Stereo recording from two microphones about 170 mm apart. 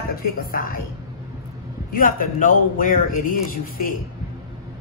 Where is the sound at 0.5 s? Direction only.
60° left (ahead or behind).